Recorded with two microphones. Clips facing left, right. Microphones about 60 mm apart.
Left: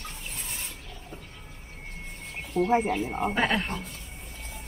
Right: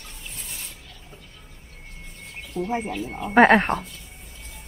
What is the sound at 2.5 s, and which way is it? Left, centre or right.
Speech, left.